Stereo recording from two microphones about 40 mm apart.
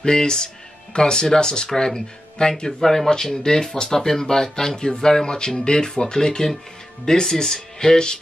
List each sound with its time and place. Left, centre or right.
0.0 s speech: centre